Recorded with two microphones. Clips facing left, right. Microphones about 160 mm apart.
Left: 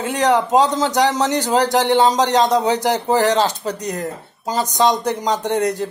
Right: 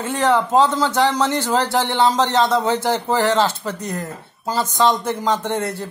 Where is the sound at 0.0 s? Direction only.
15° left (ahead or behind).